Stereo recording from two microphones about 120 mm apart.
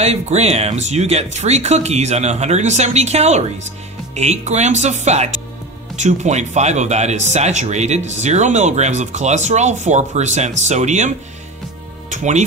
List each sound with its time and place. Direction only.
0.0 s speech: 60° right (ahead or behind)
5.9 s speech: 80° right
12.1 s music: 85° right